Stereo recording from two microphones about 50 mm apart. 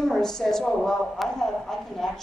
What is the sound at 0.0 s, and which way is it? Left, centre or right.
Speech, centre.